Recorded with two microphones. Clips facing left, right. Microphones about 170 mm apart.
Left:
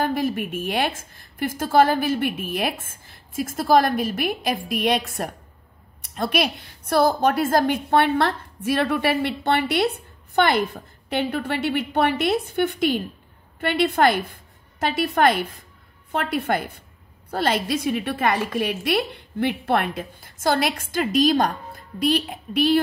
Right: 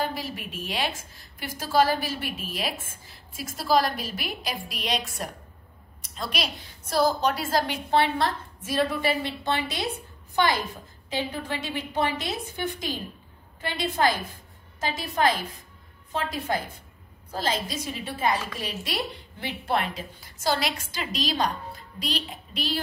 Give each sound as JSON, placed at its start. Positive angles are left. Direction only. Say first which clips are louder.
{"t": 0.0, "sound": "a woman's voice", "louder": "left 8 dB", "side_deg": 50}